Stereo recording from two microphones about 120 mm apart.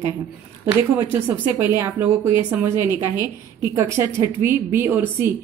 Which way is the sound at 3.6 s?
20° right (ahead or behind).